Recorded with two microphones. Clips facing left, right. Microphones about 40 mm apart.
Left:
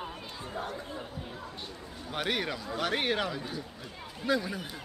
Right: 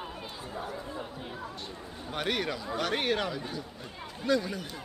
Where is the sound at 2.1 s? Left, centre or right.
Centre.